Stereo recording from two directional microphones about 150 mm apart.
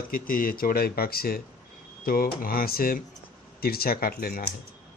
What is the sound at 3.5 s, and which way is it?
Speech, 90° left.